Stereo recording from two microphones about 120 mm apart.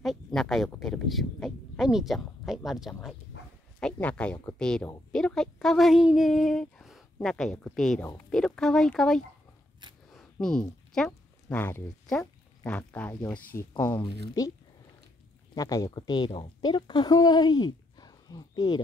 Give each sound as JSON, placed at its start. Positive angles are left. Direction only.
{"t": 0.0, "sound": "a sound", "side_deg": 0}
{"t": 0.7, "sound": "speech", "side_deg": 0}
{"t": 3.8, "sound": "speech", "side_deg": 10}
{"t": 10.0, "sound": "a sound", "side_deg": 5}
{"t": 11.5, "sound": "speech", "side_deg": 15}
{"t": 14.4, "sound": "speech", "side_deg": 30}